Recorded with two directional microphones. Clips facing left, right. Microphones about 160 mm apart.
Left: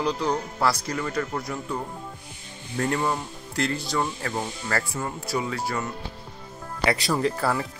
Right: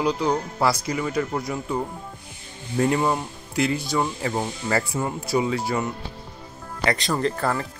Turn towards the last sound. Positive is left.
turn(degrees=5)  # may be behind; listen again after turning